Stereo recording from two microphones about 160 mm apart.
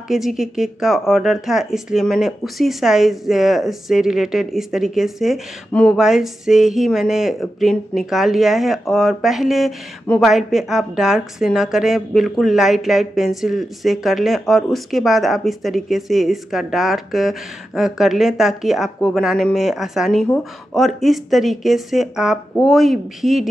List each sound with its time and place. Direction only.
0.1 s speech: centre (ahead or behind)